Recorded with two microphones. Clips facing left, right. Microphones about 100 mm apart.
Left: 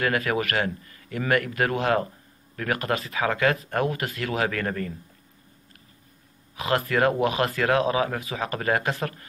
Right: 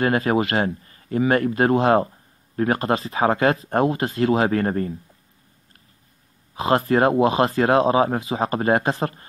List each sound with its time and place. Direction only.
0.0 s speech: 30° right (ahead or behind)
6.5 s speech: 30° right (ahead or behind)